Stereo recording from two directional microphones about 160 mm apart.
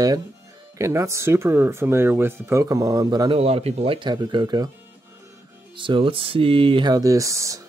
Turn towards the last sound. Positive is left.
turn(degrees=-20)  # may be behind; listen again after turning